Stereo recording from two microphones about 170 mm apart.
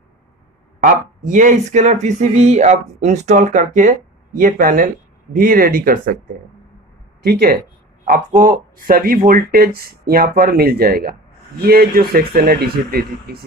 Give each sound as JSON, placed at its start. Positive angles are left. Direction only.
{"t": 0.7, "sound": "speech", "side_deg": -50}
{"t": 7.2, "sound": "speech", "side_deg": -70}
{"t": 8.0, "sound": "speech", "side_deg": -45}